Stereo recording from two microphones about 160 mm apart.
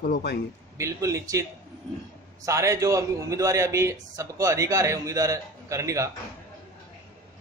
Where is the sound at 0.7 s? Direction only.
20° right (ahead or behind).